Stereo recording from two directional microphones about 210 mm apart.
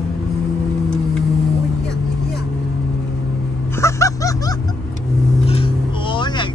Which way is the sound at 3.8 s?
15° left (ahead or behind).